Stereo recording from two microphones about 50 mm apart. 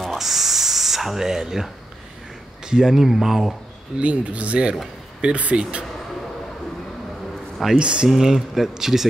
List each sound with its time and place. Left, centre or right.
0.0 s a sound: centre
2.6 s speech: centre
4.0 s speech: right
7.8 s speech: centre